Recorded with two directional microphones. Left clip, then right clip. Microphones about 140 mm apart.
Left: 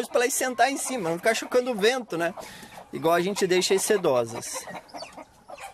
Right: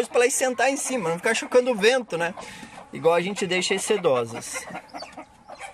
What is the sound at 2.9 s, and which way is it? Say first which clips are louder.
Speech: right 2 dB; 35° left (ahead or behind).